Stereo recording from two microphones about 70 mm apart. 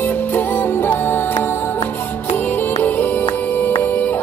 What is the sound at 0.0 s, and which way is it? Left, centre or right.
Music, left.